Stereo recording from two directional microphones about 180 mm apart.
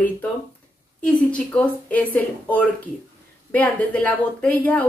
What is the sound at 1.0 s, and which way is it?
Speech, 5° left (ahead or behind).